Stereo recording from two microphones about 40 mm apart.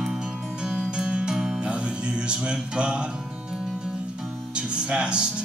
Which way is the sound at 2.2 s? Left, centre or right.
Right.